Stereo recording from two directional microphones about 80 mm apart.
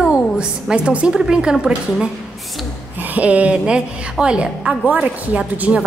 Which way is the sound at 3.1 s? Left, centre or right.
Centre.